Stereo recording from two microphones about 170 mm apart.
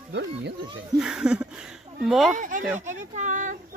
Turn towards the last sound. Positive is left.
turn(degrees=-50)  # may be behind; listen again after turning